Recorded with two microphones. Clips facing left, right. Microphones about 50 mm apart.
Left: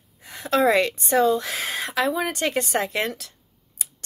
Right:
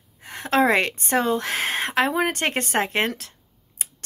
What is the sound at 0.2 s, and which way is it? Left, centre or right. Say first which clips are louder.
A woman's voice: even; right.